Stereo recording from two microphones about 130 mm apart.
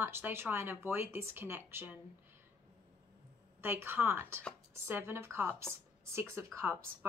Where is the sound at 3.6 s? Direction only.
15° right (ahead or behind).